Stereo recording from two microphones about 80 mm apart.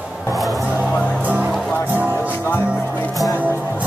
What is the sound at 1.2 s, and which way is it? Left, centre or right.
Music, right.